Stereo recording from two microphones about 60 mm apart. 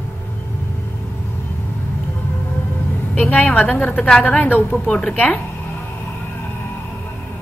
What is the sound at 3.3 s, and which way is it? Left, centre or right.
A woman's voice, left.